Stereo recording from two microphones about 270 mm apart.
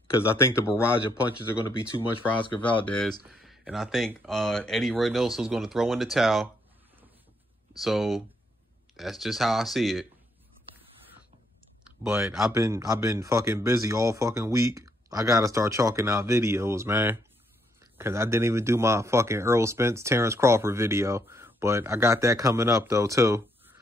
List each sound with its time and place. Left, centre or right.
0.3 s speech: centre
1.9 s speech: centre
2.8 s speech: centre
7.8 s speech: centre
11.8 s speech: centre